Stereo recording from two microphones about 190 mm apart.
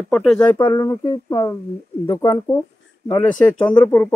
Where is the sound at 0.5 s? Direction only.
20° left (ahead or behind).